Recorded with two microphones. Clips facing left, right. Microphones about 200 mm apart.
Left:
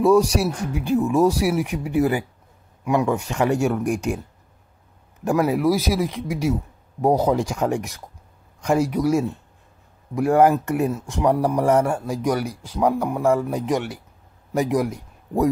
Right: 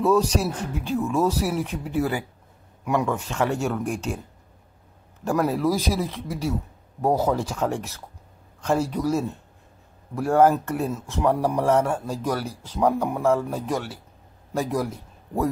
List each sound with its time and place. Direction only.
0.0 s speech: 10° left (ahead or behind)
5.2 s a man's voice: 10° left (ahead or behind)